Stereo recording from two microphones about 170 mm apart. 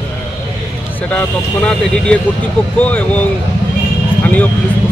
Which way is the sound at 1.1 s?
5° left (ahead or behind).